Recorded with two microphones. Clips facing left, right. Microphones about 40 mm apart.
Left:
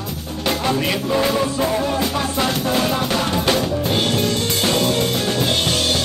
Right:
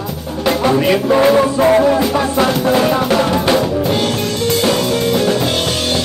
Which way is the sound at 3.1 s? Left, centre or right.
Right.